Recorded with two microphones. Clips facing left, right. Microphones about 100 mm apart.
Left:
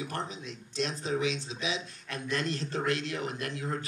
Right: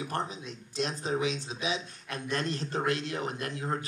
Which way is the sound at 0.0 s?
35° right (ahead or behind).